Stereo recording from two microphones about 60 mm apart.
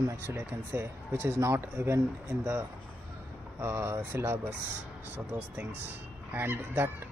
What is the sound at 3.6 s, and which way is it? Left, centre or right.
Speech, right.